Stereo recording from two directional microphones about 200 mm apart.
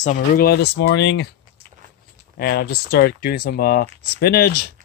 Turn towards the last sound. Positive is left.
turn(degrees=50)  # may be behind; listen again after turning